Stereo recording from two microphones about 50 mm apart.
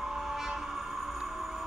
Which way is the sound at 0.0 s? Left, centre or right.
Centre.